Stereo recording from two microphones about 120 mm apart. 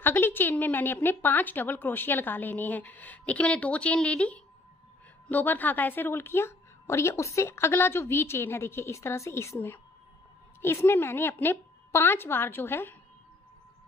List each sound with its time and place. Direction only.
0.0 s a woman's voice: 15° left (ahead or behind)